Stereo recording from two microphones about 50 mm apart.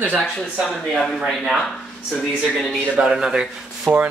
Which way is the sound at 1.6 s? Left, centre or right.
Centre.